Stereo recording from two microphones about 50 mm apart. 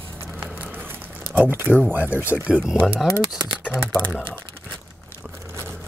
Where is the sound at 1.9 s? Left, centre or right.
Right.